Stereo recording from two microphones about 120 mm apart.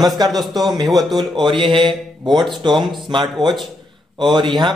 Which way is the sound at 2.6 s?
40° right (ahead or behind).